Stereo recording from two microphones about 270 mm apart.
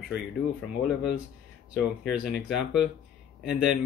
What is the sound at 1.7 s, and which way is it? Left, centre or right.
Speech, centre.